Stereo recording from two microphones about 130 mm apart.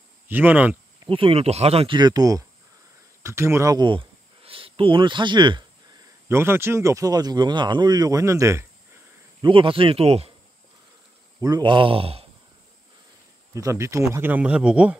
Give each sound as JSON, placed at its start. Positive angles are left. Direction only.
{"t": 0.3, "sound": "speech", "side_deg": -15}
{"t": 1.0, "sound": "speech", "side_deg": -45}
{"t": 2.0, "sound": "speech", "side_deg": -30}
{"t": 6.2, "sound": "speech", "side_deg": -20}
{"t": 9.4, "sound": "speech", "side_deg": -40}
{"t": 11.4, "sound": "speech", "side_deg": -35}
{"t": 13.6, "sound": "speech", "side_deg": -25}